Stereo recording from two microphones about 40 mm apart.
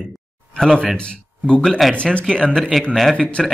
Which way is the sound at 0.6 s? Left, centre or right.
Centre.